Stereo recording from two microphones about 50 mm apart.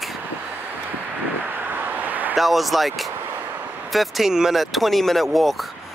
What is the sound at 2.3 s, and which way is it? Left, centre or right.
Speech, centre.